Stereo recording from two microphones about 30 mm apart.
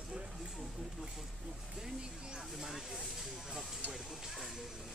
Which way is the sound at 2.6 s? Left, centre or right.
Centre.